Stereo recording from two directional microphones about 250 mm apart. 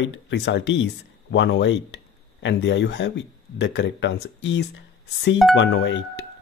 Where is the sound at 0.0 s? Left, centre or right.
Left.